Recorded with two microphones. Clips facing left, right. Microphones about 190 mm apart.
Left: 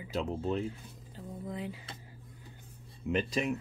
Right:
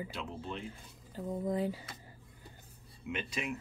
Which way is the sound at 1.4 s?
40° right (ahead or behind).